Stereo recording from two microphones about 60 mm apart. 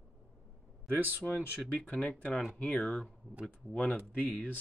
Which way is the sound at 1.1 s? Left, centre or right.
Left.